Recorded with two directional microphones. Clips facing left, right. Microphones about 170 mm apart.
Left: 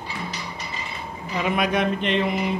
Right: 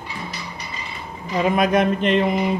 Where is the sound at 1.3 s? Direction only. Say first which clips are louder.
Right 5 dB; 40° right (ahead or behind).